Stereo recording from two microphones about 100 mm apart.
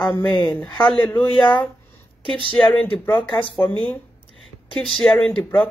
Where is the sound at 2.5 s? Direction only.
10° left (ahead or behind).